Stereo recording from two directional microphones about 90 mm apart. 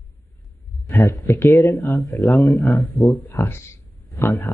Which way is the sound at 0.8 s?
30° left (ahead or behind).